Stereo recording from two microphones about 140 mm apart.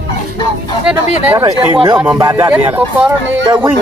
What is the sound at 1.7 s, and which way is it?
Speech, 40° right (ahead or behind).